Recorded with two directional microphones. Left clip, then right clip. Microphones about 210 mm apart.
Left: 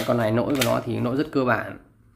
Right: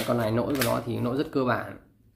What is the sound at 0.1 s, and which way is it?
Speech, 10° left (ahead or behind).